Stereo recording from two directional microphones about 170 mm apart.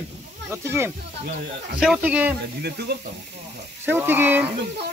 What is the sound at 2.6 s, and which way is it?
Sizzle, 70° right (ahead or behind).